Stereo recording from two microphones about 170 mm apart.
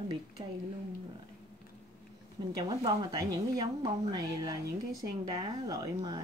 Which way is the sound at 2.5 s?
25° right (ahead or behind).